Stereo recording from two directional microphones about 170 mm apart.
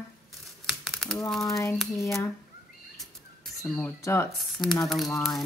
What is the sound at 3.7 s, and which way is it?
Speech, 10° left (ahead or behind).